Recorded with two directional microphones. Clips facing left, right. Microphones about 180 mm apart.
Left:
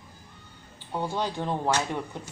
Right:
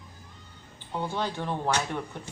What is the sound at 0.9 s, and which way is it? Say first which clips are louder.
Speech: left 1 dB; 15° left (ahead or behind).